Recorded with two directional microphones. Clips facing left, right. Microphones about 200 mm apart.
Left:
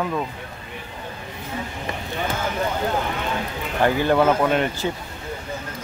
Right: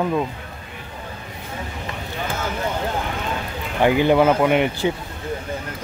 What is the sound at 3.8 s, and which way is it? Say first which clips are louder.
Speech: right 3 dB; 15° right (ahead or behind).